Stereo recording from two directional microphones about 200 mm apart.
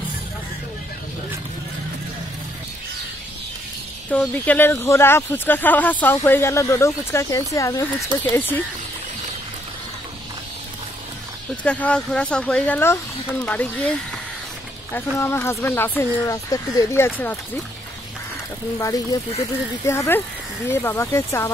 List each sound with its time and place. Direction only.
4.1 s speech: 5° left (ahead or behind)
11.6 s speech: 5° left (ahead or behind)
15.1 s speech: 15° left (ahead or behind)
18.8 s speech: 15° left (ahead or behind)